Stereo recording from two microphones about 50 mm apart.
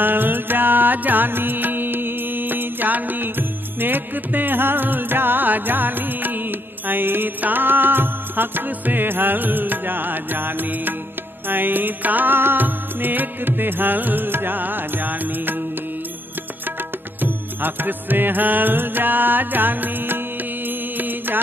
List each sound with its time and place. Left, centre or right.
0.0 s music: right
17.2 s music: right
20.6 s mantra: right